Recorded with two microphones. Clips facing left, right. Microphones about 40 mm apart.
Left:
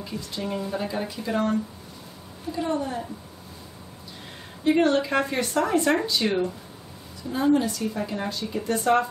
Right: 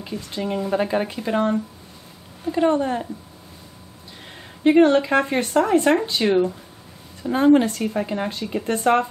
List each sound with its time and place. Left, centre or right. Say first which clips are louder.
0.0 s speech: right 4 dB; right
2.5 s speech: right 8 dB; right
4.6 s speech: right 6 dB; right
6.2 s speech: right 6 dB; right
7.2 s speech: right 6 dB; right
8.0 s speech: right 4 dB; right